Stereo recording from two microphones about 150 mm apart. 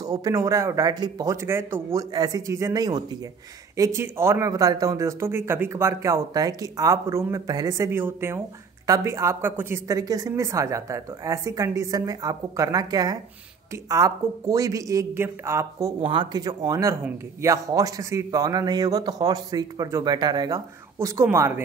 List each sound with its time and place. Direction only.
0.0 s speech: 25° right (ahead or behind)
16.0 s speech: 35° right (ahead or behind); by 21.6 s 15° right (ahead or behind)